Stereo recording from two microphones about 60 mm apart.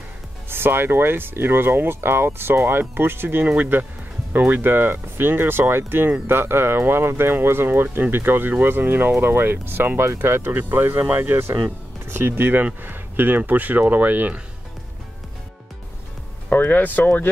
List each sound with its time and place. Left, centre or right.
0.5 s speech: right
16.4 s speech: left